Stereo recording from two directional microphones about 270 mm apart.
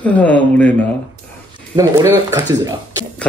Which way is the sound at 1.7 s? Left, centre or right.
Centre.